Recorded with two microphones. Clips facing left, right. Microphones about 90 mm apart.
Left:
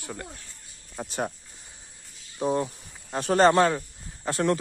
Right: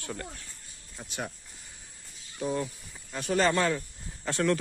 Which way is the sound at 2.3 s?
40° left (ahead or behind).